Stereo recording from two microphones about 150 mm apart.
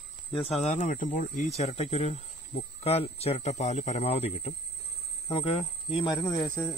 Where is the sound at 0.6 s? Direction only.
55° left (ahead or behind); by 6.1 s 35° left (ahead or behind).